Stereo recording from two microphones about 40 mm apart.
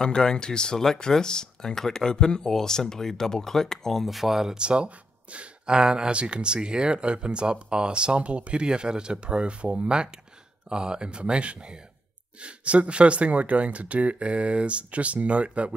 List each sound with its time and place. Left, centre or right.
0.0 s speech: centre
4.6 s speech: right